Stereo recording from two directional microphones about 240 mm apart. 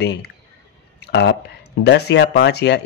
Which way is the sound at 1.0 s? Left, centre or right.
Left.